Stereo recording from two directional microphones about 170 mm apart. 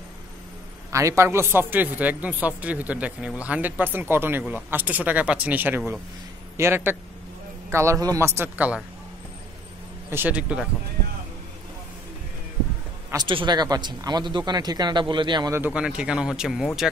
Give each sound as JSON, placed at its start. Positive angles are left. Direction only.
{"t": 0.9, "sound": "a man's voice", "side_deg": -15}
{"t": 10.0, "sound": "a man's voice", "side_deg": -10}
{"t": 13.1, "sound": "speech", "side_deg": -25}
{"t": 15.6, "sound": "speech", "side_deg": -5}